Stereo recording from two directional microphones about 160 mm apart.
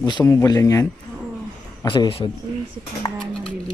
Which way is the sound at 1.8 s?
30° left (ahead or behind).